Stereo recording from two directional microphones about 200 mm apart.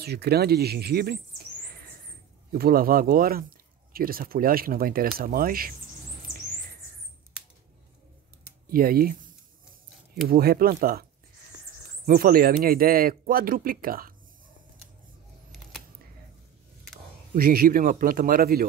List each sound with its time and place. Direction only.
0.0 s speech: 55° right (ahead or behind)
8.6 s speech: 45° right (ahead or behind)
10.3 s speech: 50° right (ahead or behind)
12.1 s speech: 45° right (ahead or behind)
17.4 s speech: 45° right (ahead or behind)